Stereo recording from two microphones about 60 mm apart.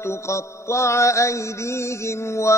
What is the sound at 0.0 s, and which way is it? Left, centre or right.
Mantra, left.